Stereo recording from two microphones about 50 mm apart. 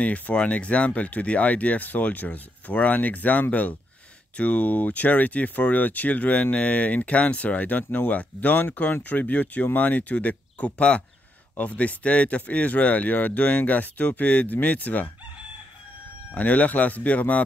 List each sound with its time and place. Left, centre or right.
0.0 s speech: left
16.3 s speech: left